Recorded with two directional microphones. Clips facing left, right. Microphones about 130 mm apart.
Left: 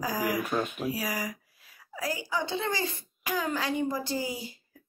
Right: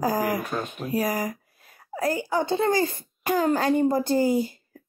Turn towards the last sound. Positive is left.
turn(degrees=-50)  # may be behind; listen again after turning